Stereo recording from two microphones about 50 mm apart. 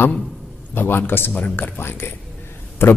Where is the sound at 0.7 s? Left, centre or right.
Left.